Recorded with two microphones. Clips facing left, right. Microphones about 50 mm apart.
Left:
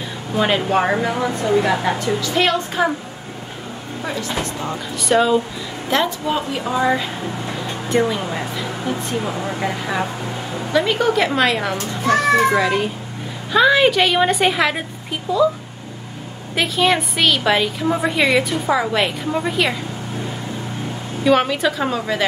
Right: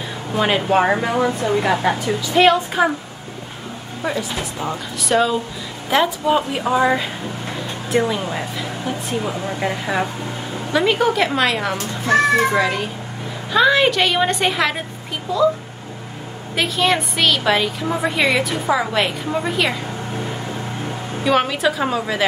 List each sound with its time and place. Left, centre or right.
0.3 s a woman's voice: centre
4.0 s a woman's voice: centre
16.5 s a woman's voice: centre
21.2 s a woman's voice: centre